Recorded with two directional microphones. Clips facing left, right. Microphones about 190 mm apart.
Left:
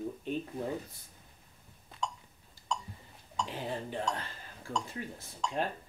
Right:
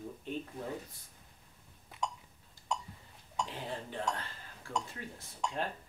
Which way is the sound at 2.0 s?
20° right (ahead or behind).